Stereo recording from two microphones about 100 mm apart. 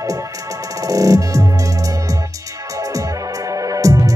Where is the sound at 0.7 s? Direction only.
35° right (ahead or behind).